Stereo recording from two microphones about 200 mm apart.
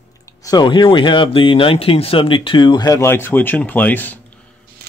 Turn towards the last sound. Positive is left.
turn(degrees=10)  # may be behind; listen again after turning